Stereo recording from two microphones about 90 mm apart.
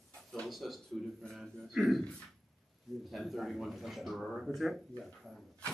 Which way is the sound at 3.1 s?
Centre (ahead or behind).